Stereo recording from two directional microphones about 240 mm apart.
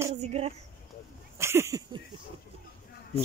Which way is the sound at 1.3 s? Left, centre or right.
Centre.